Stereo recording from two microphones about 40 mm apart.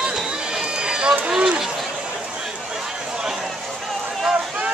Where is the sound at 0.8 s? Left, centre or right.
Centre.